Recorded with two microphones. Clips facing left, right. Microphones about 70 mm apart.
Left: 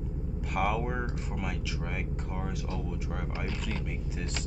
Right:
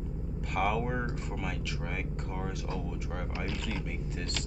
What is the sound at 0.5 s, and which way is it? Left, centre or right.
Speech, centre.